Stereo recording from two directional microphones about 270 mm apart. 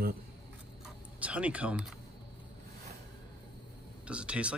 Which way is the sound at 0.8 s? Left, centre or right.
Centre.